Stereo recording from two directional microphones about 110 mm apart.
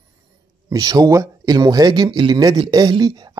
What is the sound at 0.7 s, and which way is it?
Speech, 35° right (ahead or behind).